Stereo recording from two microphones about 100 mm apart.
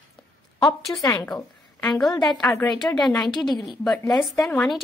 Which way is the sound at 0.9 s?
30° left (ahead or behind).